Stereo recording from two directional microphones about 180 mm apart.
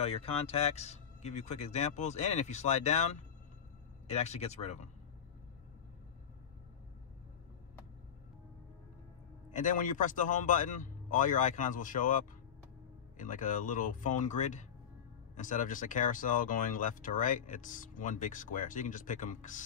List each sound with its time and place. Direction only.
0.0 s speech: 35° left (ahead or behind)
9.5 s speech: 45° left (ahead or behind)